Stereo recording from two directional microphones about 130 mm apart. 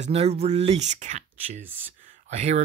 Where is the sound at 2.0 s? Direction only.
60° right (ahead or behind).